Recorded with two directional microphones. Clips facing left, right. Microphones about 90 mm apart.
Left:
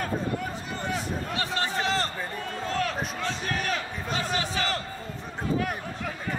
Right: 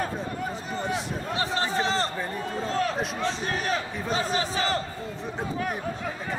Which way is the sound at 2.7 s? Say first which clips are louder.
Right 2 dB; 35° right (ahead or behind).